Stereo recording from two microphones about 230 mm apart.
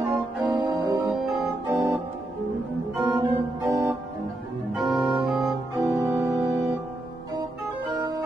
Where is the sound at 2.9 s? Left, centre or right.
Centre.